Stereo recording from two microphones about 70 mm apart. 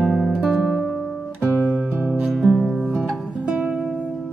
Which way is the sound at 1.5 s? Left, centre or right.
Left.